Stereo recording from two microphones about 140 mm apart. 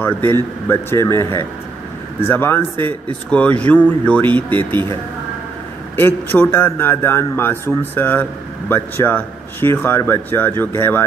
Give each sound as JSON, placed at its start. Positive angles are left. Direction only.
{"t": 0.0, "sound": "a man's voice", "side_deg": 15}
{"t": 5.9, "sound": "a man's voice", "side_deg": 15}